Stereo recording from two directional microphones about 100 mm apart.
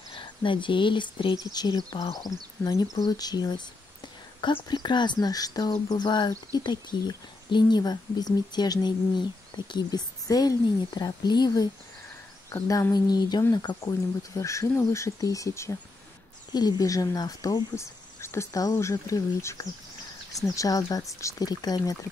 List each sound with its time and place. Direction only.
0.1 s speech: 55° left (ahead or behind)
12.9 s speech: 45° left (ahead or behind)
16.5 s speech: 40° left (ahead or behind)
18.2 s speech: 25° left (ahead or behind)